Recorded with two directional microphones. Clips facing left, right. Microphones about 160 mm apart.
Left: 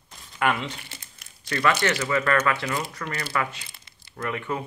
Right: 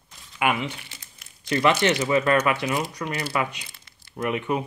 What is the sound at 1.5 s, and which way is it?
Speech, 20° right (ahead or behind).